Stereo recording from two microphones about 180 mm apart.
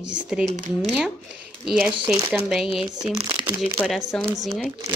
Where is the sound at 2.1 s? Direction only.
20° right (ahead or behind).